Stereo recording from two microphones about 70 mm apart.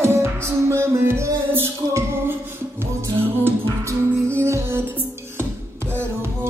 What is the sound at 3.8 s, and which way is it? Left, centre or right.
Music, right.